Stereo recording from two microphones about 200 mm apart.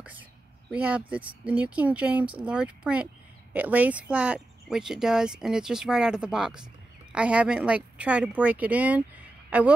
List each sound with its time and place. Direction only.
0.7 s a man's voice: 5° right (ahead or behind)